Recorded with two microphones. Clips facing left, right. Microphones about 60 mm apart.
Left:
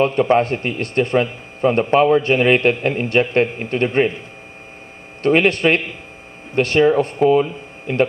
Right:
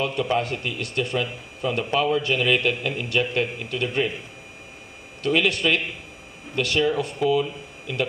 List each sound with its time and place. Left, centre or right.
0.0 s a man's voice: left
5.2 s a man's voice: left